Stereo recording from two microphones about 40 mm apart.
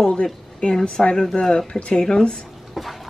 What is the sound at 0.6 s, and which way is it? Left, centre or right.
Speech, left.